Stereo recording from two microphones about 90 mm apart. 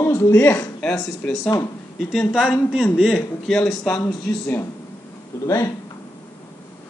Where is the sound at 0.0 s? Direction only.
30° left (ahead or behind).